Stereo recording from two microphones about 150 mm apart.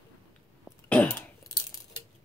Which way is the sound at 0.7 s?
10° left (ahead or behind).